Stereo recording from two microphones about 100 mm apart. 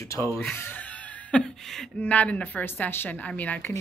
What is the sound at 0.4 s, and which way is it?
Speech, 20° left (ahead or behind).